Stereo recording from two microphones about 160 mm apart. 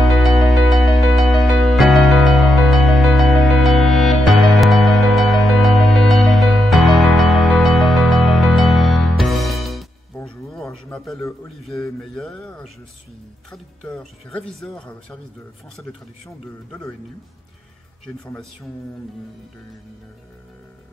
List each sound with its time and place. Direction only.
0.1 s music: centre (ahead or behind)
11.6 s a sound: centre (ahead or behind)
13.5 s speech: 5° left (ahead or behind)
18.0 s speech: 5° left (ahead or behind)